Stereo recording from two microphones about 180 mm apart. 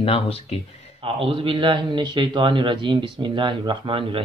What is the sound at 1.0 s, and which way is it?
A man's voice, 30° right (ahead or behind).